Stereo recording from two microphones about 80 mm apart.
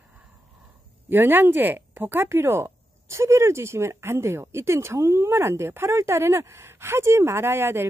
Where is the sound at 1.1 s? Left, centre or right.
Right.